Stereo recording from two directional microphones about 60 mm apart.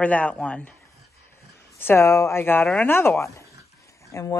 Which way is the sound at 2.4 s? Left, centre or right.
Left.